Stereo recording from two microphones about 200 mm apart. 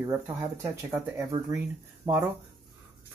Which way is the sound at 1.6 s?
10° right (ahead or behind).